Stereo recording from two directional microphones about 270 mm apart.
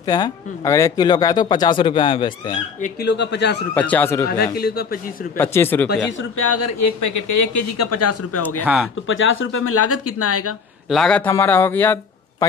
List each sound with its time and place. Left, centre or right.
0.0 s speech: centre
3.0 s speech: left
3.7 s speech: centre
4.4 s speech: left
5.4 s speech: centre
6.3 s speech: left
9.0 s speech: left
10.9 s a man's voice: centre